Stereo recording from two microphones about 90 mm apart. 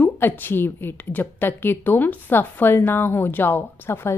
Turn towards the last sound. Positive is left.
turn(degrees=25)  # may be behind; listen again after turning